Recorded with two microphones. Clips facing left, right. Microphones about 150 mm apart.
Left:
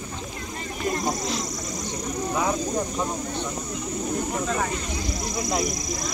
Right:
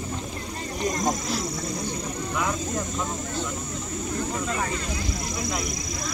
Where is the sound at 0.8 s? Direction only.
20° right (ahead or behind).